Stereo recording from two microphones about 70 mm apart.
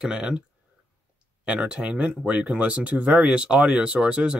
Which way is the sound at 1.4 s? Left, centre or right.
Centre.